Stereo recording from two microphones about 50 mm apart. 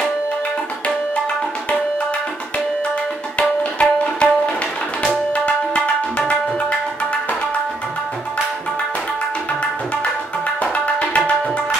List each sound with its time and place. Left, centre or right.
3.3 s tabla: left
5.3 s tabla: left
10.6 s tabla: left